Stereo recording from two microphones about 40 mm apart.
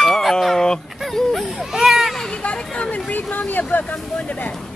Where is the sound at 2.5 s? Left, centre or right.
Left.